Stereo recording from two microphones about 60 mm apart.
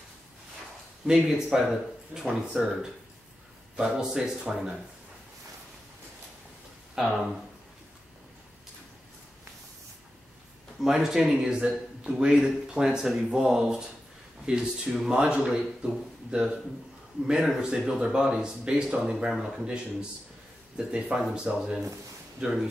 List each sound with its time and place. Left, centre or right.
1.0 s a man's voice: centre
7.0 s a man's voice: centre
10.8 s a man's voice: centre
17.6 s a man's voice: centre